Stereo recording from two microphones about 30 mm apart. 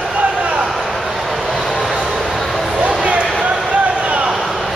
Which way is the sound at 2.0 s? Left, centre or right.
Centre.